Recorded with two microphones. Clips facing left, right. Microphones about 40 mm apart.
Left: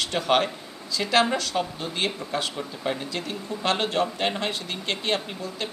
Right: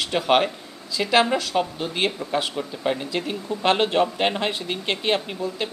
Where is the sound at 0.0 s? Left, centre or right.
Centre.